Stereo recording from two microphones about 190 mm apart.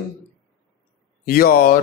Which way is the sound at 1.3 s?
50° left (ahead or behind).